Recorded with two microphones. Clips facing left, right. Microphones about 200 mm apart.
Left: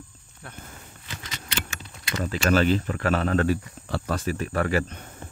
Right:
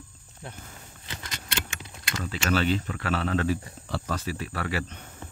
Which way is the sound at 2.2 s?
45° left (ahead or behind).